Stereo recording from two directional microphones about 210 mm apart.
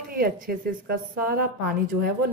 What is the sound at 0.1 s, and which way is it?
A woman's voice, 45° right (ahead or behind).